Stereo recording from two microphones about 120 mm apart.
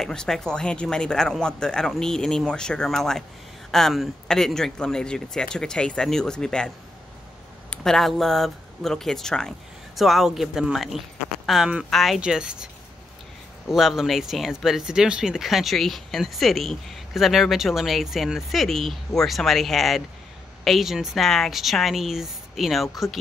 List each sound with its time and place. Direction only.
0.0 s speech: 5° left (ahead or behind)
7.7 s speech: 5° left (ahead or behind)
13.7 s speech: 5° right (ahead or behind)